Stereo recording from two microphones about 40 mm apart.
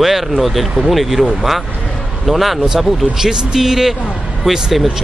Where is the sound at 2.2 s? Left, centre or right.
Centre.